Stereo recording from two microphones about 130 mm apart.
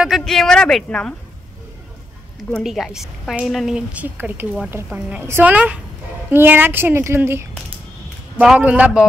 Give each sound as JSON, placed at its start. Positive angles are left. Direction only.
{"t": 0.0, "sound": "speech", "side_deg": 0}
{"t": 2.6, "sound": "a woman's voice", "side_deg": -5}